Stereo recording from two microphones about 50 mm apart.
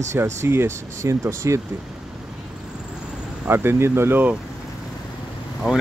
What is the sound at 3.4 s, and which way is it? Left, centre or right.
Speech, right.